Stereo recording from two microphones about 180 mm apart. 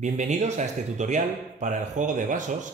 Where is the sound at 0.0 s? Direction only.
40° right (ahead or behind).